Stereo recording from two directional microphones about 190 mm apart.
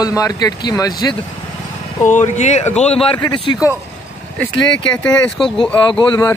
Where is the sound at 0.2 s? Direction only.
20° left (ahead or behind).